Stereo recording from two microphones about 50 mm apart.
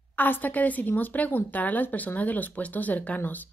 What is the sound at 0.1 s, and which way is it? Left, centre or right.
Speech, left.